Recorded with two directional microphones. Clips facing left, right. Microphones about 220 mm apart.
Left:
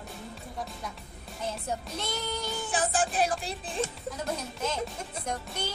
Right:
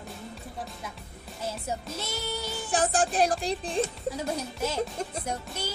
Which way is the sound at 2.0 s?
10° right (ahead or behind).